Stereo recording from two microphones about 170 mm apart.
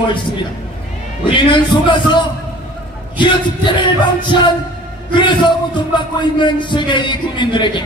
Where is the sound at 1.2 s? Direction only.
30° left (ahead or behind).